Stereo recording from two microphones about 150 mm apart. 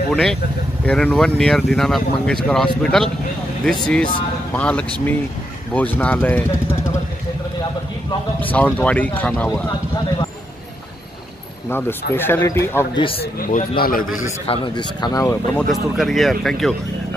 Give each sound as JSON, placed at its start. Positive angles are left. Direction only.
{"t": 0.1, "sound": "speech", "side_deg": 5}
{"t": 8.4, "sound": "speech", "side_deg": 10}
{"t": 11.7, "sound": "speech", "side_deg": 15}
{"t": 12.9, "sound": "speech", "side_deg": 35}
{"t": 13.2, "sound": "a man's voice", "side_deg": 65}
{"t": 14.4, "sound": "speech", "side_deg": 35}
{"t": 15.7, "sound": "speech", "side_deg": 0}